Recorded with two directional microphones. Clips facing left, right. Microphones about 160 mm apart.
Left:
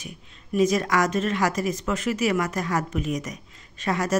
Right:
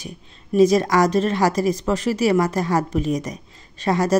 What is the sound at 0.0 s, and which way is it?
A woman's voice, 35° right (ahead or behind).